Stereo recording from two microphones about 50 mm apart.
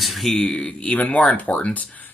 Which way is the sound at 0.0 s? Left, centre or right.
Centre.